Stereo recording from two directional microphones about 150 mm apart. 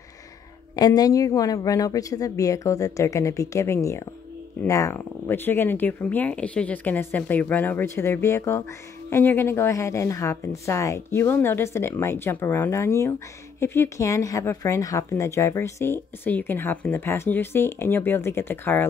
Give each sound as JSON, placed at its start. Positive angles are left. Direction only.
{"t": 0.7, "sound": "speech", "side_deg": 25}